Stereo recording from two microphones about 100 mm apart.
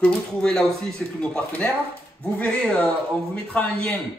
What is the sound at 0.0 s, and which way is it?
Speech, 5° left (ahead or behind).